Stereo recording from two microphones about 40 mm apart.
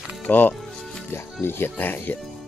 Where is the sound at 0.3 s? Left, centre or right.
Left.